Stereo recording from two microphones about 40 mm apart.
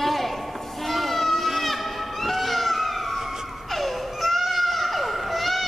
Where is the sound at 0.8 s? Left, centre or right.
Centre.